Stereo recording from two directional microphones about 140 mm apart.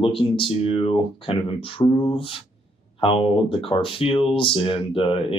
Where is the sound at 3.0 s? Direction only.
40° left (ahead or behind).